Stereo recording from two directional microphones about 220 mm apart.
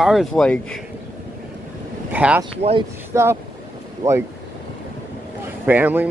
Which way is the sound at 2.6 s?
25° right (ahead or behind).